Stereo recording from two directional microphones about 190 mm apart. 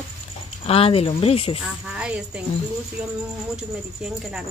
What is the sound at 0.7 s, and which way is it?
Speech, 30° left (ahead or behind).